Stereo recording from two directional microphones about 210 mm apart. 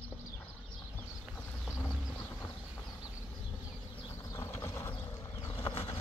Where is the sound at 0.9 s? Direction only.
10° left (ahead or behind).